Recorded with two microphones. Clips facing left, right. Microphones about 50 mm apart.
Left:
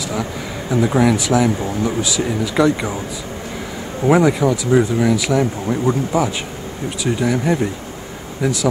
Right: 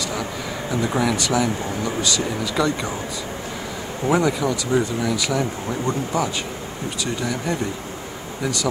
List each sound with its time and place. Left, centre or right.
0.1 s speech: centre
4.0 s speech: centre